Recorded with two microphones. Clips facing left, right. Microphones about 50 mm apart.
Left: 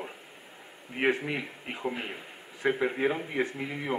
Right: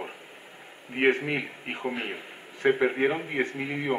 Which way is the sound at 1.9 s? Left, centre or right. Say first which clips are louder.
Right 3 dB; right.